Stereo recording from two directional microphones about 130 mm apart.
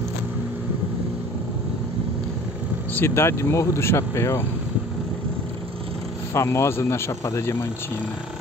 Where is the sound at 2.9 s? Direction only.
20° left (ahead or behind).